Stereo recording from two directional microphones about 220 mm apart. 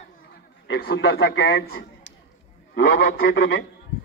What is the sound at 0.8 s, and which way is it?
A man's voice, 45° left (ahead or behind).